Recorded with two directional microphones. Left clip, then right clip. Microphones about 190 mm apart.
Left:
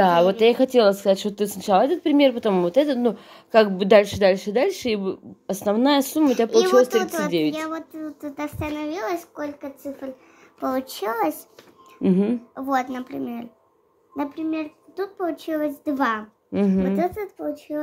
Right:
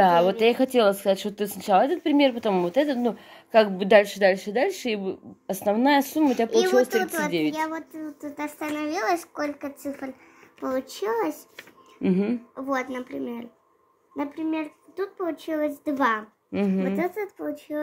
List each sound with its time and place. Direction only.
0.0 s speech: 10° left (ahead or behind)
7.5 s speech: 30° left (ahead or behind)
8.7 s speech: 15° left (ahead or behind)
10.6 s speech: 45° left (ahead or behind)
11.5 s a sound: 5° left (ahead or behind)
12.5 s speech: 40° left (ahead or behind)
16.5 s speech: 10° left (ahead or behind)
17.0 s speech: 25° left (ahead or behind)